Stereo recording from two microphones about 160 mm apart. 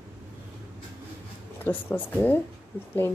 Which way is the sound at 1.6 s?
10° left (ahead or behind).